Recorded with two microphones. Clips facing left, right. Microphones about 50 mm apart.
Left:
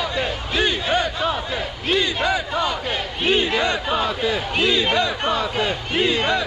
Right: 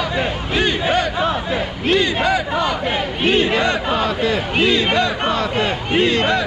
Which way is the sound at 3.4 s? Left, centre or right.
Right.